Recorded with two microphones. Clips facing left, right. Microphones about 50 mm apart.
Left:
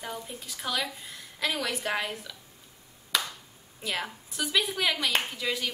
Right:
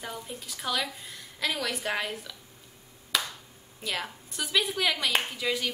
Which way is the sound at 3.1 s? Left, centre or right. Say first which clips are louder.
Even; centre.